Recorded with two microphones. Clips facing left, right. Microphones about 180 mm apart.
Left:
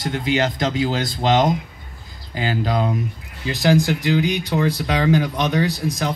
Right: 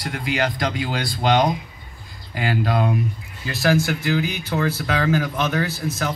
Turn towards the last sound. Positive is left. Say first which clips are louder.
# left 3 dB
turn(degrees=15)  # may be behind; listen again after turning